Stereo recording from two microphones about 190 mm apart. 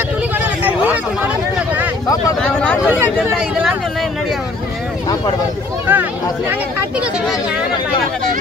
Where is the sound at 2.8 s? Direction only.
10° right (ahead or behind).